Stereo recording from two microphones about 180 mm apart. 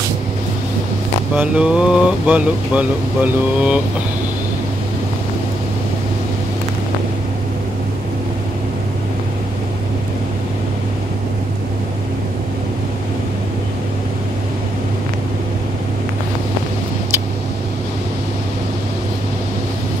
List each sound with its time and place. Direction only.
1.3 s speech: 5° right (ahead or behind)